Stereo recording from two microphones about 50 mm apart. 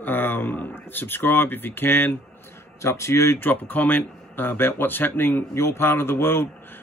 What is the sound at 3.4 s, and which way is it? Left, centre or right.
A man's voice, left.